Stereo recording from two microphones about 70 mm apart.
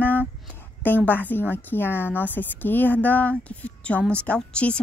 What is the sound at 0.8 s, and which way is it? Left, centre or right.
A woman's voice, left.